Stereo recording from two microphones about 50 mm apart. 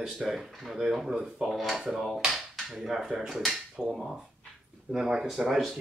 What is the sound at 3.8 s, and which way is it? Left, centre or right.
Speech, centre.